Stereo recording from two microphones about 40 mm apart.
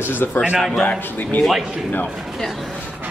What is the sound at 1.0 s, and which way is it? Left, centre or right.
Speech, left.